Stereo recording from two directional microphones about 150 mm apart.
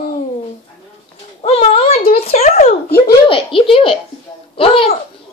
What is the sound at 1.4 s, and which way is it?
A child's voice, 40° left (ahead or behind).